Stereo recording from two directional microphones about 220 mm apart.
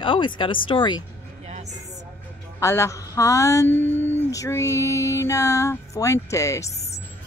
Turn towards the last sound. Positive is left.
turn(degrees=30)  # may be behind; listen again after turning